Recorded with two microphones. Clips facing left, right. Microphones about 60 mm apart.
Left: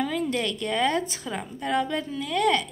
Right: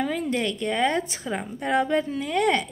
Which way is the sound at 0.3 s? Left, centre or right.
Right.